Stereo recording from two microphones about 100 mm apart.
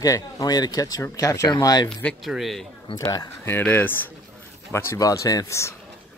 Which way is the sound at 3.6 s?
20° left (ahead or behind).